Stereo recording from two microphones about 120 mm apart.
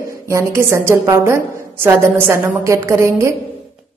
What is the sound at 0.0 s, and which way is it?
A woman's voice, 25° right (ahead or behind).